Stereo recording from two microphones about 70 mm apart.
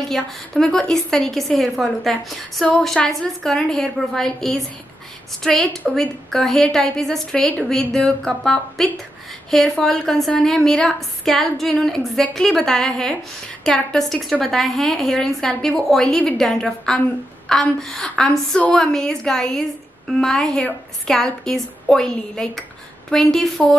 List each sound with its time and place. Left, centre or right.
0.1 s a woman's voice: centre